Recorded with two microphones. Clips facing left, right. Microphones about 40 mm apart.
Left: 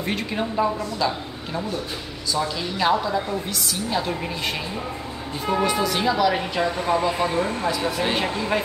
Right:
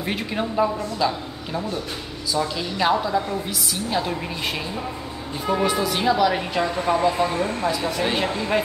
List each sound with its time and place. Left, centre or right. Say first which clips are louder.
0.0 s a woman's voice: even; centre
5.5 s a woman's voice: even; centre
7.7 s speech: right 1 dB; centre
8.0 s a woman's voice: even; centre